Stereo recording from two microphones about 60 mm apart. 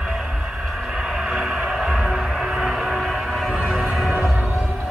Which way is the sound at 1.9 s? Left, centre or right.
Centre.